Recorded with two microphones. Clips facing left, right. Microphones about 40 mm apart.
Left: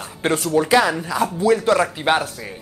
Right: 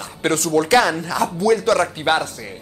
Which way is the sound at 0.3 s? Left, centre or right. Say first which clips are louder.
Right 1 dB; centre.